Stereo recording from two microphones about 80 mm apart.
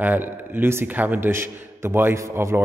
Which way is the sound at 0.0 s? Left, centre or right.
Right.